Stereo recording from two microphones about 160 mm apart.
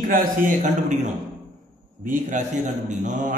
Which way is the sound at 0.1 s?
55° right (ahead or behind).